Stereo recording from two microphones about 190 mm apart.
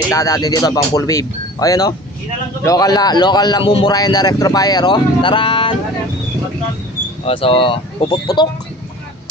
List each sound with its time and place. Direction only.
0.1 s speech: 15° left (ahead or behind)
7.2 s speech: 30° left (ahead or behind)